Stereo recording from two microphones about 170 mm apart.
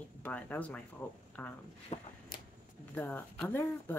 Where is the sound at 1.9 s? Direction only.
40° left (ahead or behind).